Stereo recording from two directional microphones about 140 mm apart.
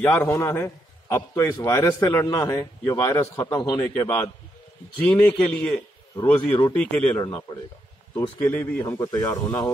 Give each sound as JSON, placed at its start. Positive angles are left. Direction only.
{"t": 0.0, "sound": "a man's voice", "side_deg": 15}
{"t": 3.8, "sound": "a man's voice", "side_deg": 15}
{"t": 8.4, "sound": "a man's voice", "side_deg": 10}